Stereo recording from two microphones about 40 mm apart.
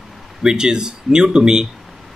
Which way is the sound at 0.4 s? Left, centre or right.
Centre.